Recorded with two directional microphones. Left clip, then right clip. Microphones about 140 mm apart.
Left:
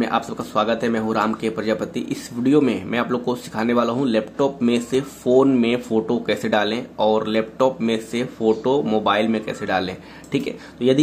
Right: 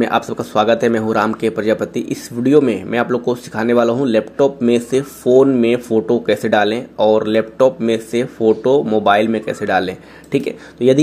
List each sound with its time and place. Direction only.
0.0 s speech: 30° right (ahead or behind)